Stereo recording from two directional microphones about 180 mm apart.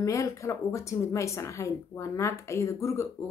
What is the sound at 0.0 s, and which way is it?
Speech, 15° left (ahead or behind).